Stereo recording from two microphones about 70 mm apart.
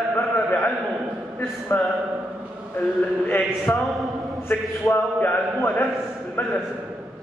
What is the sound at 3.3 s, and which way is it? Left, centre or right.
A man's voice, left.